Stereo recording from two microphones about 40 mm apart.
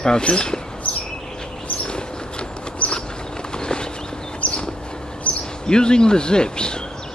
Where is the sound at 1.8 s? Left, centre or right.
Left.